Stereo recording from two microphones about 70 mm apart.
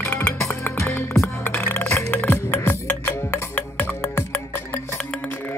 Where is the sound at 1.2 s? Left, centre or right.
Left.